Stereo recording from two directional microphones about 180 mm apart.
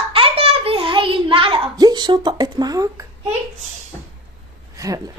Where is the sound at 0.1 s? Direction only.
30° right (ahead or behind).